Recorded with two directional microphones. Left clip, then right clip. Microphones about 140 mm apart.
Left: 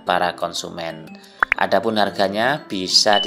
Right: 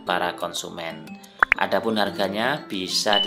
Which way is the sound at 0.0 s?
30° left (ahead or behind).